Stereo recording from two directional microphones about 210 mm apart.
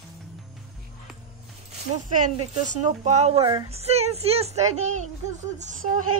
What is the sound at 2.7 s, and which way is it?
Speech, 35° right (ahead or behind).